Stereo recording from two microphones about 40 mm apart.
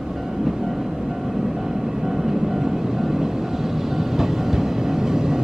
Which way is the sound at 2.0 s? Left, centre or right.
Centre.